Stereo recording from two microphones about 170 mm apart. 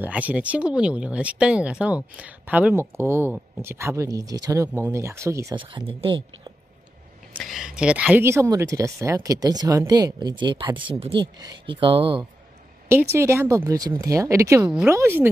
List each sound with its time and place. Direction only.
0.0 s speech: 10° right (ahead or behind)
5.6 s speech: 30° right (ahead or behind)
7.3 s speech: centre (ahead or behind); by 12.3 s 30° right (ahead or behind)
12.8 s speech: 15° right (ahead or behind)
14.7 s speech: 5° right (ahead or behind)